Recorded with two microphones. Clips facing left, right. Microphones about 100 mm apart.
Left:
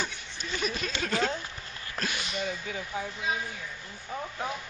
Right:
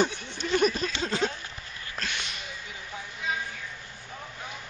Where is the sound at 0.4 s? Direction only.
50° right (ahead or behind).